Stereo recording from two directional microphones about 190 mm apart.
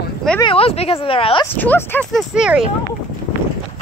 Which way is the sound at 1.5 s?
10° left (ahead or behind).